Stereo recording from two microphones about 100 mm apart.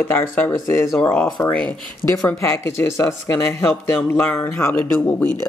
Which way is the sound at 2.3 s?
30° left (ahead or behind).